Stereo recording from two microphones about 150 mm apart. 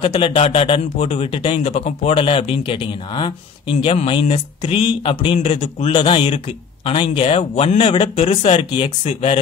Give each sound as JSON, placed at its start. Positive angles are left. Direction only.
{"t": 0.0, "sound": "a man's voice", "side_deg": 35}